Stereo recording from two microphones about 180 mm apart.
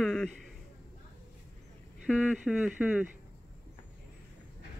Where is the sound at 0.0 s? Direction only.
5° left (ahead or behind).